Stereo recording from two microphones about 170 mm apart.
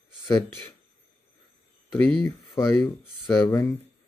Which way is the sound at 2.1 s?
10° left (ahead or behind).